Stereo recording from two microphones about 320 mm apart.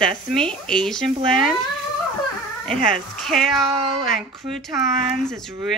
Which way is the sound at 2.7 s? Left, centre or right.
Left.